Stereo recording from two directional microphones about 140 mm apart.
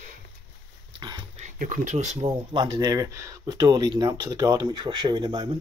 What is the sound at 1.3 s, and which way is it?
Speech, 60° right (ahead or behind).